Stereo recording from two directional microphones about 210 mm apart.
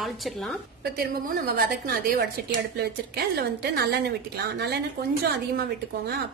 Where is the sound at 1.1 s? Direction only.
45° right (ahead or behind).